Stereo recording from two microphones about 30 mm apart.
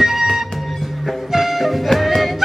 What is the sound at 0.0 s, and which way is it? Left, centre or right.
Music, centre.